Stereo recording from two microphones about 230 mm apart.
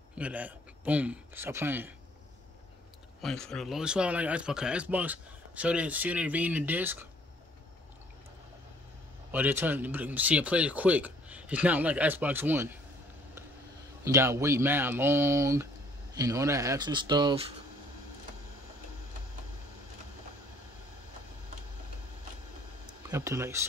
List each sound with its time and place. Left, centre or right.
0.2 s speech: centre
3.2 s speech: centre
9.3 s speech: centre
14.0 s speech: centre
23.0 s speech: centre